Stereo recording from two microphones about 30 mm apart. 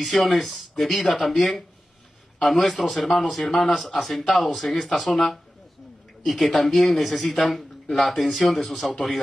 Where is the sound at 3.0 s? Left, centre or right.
Centre.